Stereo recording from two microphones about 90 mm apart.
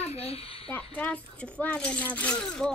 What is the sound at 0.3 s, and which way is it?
Speech, 90° left.